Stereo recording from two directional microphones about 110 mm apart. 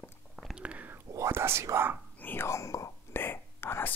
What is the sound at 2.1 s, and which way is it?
Whispering, 20° left (ahead or behind).